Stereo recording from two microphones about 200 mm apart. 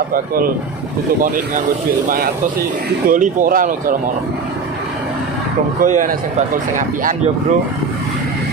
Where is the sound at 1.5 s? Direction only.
45° right (ahead or behind).